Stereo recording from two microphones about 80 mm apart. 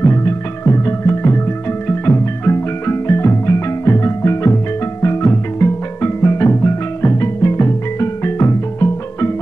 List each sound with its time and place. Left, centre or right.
0.0 s music: left